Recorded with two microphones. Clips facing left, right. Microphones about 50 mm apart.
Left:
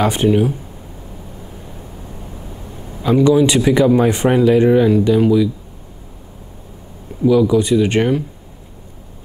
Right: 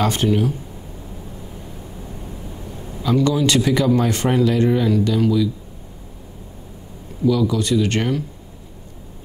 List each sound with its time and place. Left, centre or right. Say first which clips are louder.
0.0 s speech: left 4 dB; centre
2.7 s a man's voice: left 4 dB; left
7.2 s speech: left 6 dB; centre